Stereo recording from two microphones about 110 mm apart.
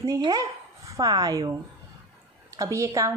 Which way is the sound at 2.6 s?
30° right (ahead or behind).